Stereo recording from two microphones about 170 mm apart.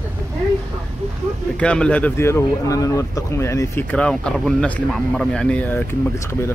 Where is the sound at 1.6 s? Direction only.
5° left (ahead or behind).